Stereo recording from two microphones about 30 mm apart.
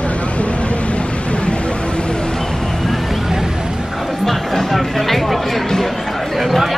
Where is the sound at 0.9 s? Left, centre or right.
Left.